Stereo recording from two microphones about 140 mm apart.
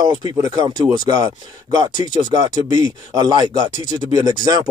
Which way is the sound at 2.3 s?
25° right (ahead or behind).